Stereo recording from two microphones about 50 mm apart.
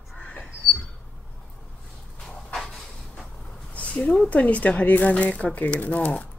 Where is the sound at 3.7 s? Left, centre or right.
Left.